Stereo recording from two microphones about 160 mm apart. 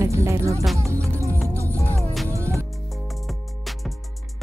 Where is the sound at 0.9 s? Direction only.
20° right (ahead or behind).